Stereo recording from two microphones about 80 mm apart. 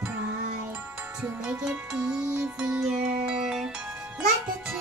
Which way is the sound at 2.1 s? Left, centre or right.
Right.